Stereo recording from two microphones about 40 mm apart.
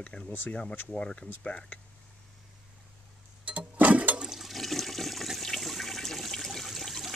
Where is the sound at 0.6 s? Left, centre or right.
Left.